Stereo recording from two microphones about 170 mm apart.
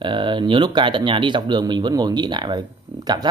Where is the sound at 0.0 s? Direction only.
30° right (ahead or behind).